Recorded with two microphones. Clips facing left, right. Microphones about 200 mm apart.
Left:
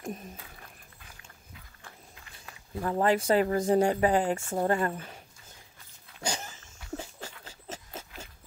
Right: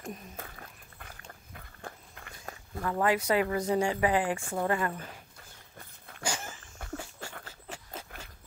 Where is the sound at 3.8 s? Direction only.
45° left (ahead or behind).